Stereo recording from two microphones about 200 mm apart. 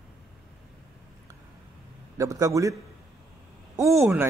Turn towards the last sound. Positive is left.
turn(degrees=-15)  # may be behind; listen again after turning